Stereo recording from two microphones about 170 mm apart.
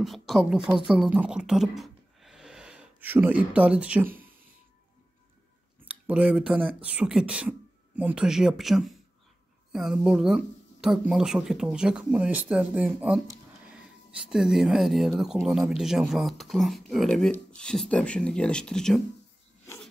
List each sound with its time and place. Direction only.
0.0 s speech: centre (ahead or behind)
5.9 s speech: 5° right (ahead or behind)